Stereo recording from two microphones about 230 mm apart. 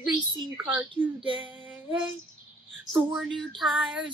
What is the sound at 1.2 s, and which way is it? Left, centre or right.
Child singing, right.